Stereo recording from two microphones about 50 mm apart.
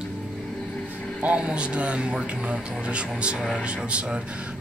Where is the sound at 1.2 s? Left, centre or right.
Right.